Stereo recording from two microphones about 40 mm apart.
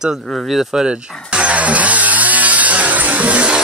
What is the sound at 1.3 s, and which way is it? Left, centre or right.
Chainsaw, right.